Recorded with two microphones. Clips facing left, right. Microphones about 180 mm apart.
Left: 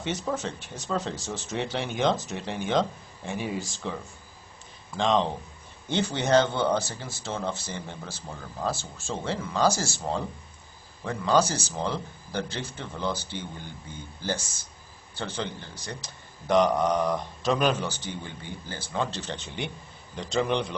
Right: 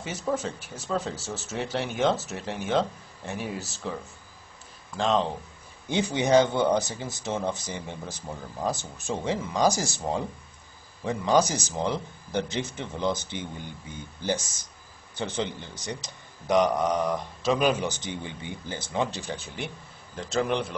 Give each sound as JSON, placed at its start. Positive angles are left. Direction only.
{"t": 0.0, "sound": "speech", "side_deg": -5}
{"t": 5.9, "sound": "speech", "side_deg": -15}
{"t": 16.4, "sound": "speech", "side_deg": -10}
{"t": 17.8, "sound": "speech", "side_deg": -20}